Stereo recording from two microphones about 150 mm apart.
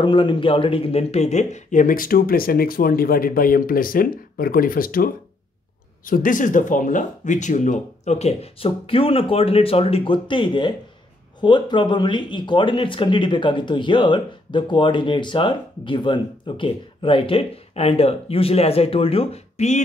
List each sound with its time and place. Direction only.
0.0 s speech: 35° left (ahead or behind)